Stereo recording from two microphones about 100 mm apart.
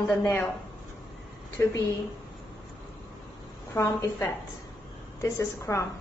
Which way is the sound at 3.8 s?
30° left (ahead or behind).